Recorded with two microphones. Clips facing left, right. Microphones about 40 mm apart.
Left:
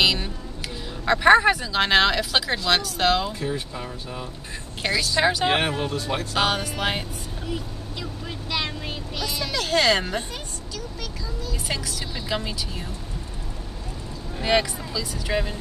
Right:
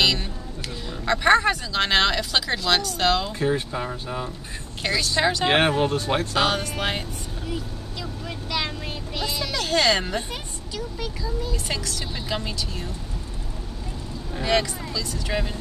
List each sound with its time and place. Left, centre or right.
0.0 s music: centre
1.0 s speech: centre
3.3 s speech: right
4.8 s a woman's voice: centre
5.6 s speech: right
6.3 s a woman's voice: centre
9.5 s a woman's voice: centre
11.6 s a woman's voice: centre
14.4 s speech: centre